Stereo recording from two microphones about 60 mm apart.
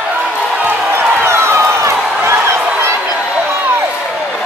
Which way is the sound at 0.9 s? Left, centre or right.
Right.